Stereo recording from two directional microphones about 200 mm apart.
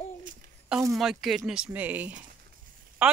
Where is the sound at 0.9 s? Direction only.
Centre (ahead or behind).